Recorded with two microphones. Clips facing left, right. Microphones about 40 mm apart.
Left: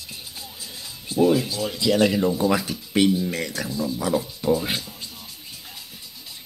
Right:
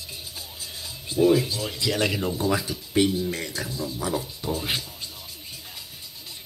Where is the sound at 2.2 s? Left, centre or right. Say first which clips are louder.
Left 5 dB; left.